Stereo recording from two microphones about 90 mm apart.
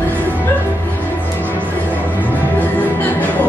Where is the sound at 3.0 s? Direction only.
20° left (ahead or behind).